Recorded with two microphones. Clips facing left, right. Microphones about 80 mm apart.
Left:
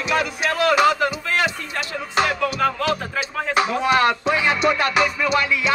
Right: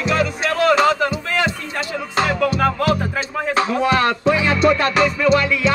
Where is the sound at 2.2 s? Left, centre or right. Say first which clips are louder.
Right 2 dB; centre.